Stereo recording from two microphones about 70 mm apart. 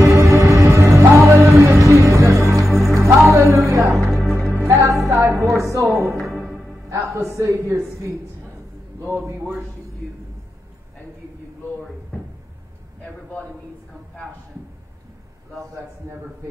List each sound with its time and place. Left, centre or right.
0.0 s music: right
4.1 s music: centre
4.6 s music: right
6.0 s music: centre
7.2 s speech: right
16.0 s speech: right